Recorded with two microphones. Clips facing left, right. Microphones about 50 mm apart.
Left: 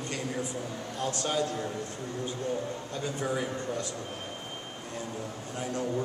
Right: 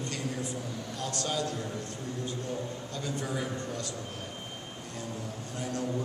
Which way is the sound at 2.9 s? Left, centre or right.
Centre.